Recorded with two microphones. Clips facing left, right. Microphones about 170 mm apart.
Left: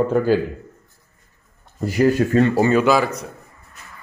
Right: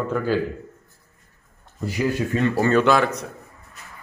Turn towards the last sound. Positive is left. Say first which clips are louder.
# left 1 dB
turn(degrees=0)  # may be behind; listen again after turning